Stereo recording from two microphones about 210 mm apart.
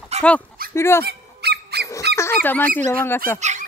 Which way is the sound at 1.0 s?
50° right (ahead or behind).